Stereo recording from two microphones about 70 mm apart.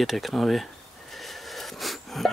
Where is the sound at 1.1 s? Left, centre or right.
Centre.